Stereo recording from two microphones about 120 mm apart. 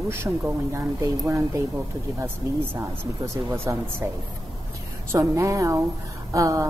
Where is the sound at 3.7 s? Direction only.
25° right (ahead or behind).